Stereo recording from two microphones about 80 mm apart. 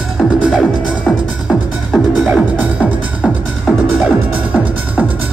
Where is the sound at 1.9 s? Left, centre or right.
Centre.